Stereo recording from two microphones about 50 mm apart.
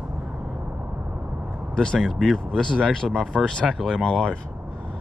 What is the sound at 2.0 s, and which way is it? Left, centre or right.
Speech, centre.